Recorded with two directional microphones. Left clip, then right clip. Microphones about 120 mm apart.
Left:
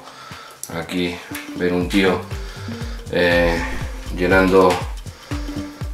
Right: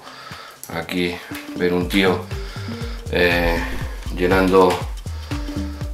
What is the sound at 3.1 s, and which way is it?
Speech, 20° right (ahead or behind).